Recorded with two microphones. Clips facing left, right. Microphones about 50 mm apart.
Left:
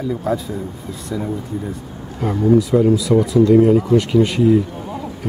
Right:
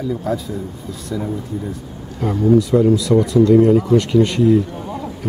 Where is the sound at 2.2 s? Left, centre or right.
Centre.